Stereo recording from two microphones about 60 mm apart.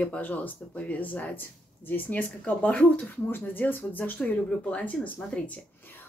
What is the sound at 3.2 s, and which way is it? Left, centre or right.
Speech, left.